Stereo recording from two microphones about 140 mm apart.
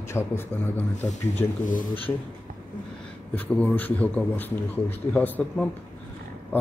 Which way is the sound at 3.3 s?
10° left (ahead or behind).